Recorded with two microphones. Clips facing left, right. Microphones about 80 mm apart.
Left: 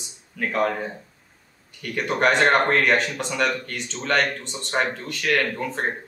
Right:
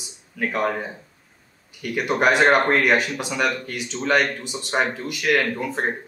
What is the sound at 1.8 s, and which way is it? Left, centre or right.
Speech, centre.